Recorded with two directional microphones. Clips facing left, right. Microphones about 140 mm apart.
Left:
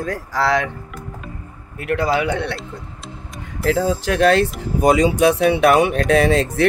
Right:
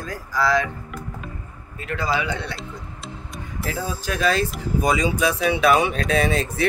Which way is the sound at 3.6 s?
85° left.